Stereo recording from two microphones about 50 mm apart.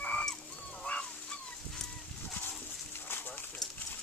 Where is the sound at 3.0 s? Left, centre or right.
Left.